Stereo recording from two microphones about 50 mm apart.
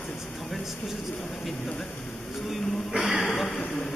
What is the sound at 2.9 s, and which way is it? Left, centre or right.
Speech, centre.